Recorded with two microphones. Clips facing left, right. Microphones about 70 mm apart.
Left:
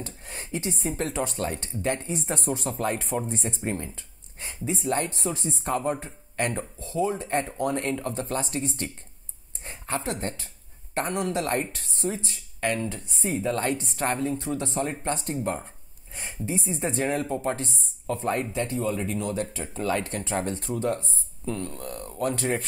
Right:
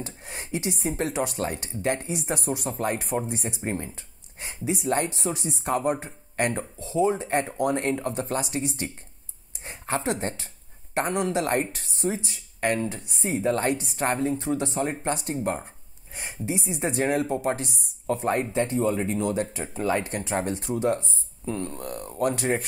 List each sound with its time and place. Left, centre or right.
0.0 s speech: centre
3.6 s speech: right
13.7 s speech: centre
13.9 s speech: right
20.9 s speech: right